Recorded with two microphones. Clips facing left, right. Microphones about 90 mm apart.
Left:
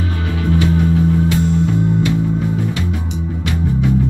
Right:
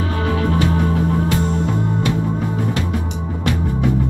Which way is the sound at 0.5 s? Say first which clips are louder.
Left 6 dB; 45° right (ahead or behind).